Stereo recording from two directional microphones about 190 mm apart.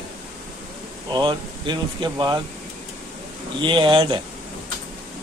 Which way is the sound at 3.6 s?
25° right (ahead or behind).